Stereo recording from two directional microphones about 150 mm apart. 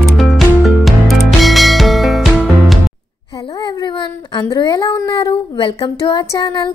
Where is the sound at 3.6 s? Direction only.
30° left (ahead or behind).